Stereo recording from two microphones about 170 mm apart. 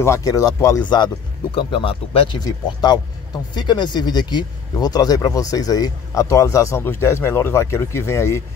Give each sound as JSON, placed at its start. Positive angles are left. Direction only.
{"t": 0.0, "sound": "speech", "side_deg": 20}